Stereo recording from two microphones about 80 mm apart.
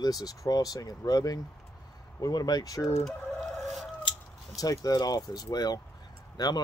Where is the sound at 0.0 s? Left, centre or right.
Left.